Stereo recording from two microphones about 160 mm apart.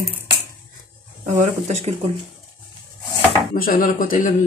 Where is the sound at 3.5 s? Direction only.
65° left (ahead or behind).